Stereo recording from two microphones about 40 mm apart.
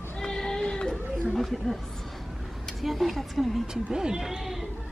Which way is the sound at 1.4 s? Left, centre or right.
Centre.